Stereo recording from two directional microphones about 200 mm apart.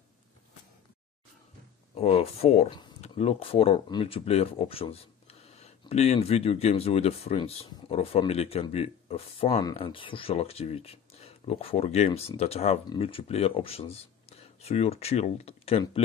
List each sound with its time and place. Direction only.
2.0 s speech: 30° left (ahead or behind)